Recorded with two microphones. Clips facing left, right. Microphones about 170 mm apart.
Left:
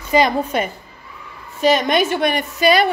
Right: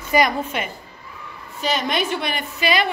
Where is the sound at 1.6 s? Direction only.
50° left (ahead or behind).